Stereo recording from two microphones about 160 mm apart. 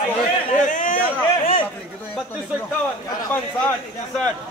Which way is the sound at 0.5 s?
55° left (ahead or behind).